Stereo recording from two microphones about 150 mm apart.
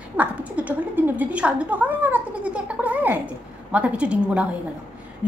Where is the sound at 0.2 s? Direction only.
10° right (ahead or behind).